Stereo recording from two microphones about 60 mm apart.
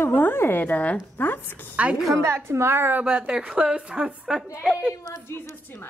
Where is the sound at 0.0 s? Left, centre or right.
Left.